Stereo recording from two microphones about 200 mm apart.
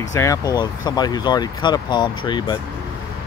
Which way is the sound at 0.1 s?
15° left (ahead or behind).